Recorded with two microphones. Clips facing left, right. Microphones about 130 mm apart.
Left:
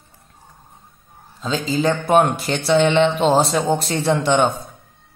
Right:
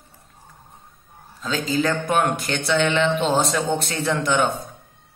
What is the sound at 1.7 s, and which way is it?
Speech, 30° left (ahead or behind).